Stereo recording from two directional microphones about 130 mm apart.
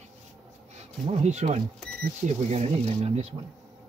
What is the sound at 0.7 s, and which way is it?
Speech, 60° right (ahead or behind).